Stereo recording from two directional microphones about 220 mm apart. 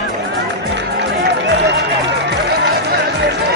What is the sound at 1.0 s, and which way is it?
Music, 50° right (ahead or behind).